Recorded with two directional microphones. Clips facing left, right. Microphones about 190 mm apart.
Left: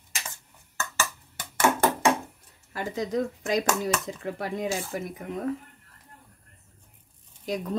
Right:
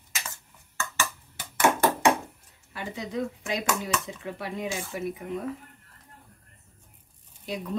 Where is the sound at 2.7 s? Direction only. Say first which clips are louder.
Left 5 dB; 45° left (ahead or behind).